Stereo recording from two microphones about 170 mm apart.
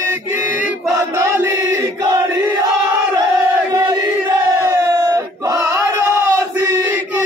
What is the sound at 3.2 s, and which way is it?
Crowd, 20° right (ahead or behind).